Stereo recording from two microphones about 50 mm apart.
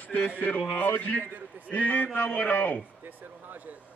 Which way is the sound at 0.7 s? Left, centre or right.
Left.